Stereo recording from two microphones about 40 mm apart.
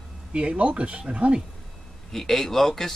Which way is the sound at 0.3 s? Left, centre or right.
Right.